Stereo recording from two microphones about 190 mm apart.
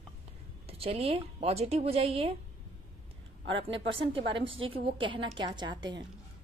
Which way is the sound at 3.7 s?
75° right (ahead or behind).